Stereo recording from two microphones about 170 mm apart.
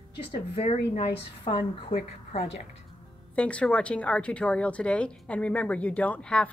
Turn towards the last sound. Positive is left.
turn(degrees=5)  # may be behind; listen again after turning